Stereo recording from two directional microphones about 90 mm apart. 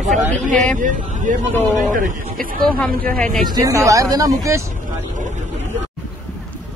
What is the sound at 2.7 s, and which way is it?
Speech, 5° left (ahead or behind).